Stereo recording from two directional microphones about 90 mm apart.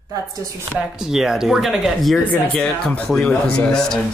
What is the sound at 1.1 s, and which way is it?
Speech, 5° right (ahead or behind).